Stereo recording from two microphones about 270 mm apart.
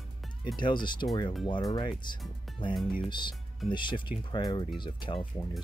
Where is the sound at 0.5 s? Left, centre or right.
Centre.